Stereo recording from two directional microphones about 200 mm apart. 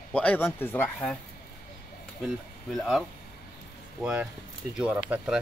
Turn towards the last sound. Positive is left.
turn(degrees=-5)  # may be behind; listen again after turning